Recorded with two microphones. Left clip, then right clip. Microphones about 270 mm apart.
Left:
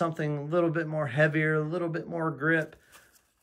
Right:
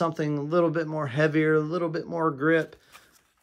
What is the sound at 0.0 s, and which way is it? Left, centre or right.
Speech, centre.